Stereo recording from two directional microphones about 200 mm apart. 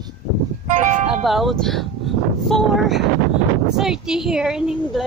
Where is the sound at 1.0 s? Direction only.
Centre (ahead or behind).